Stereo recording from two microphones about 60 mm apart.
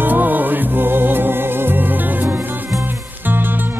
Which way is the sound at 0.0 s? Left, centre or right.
Right.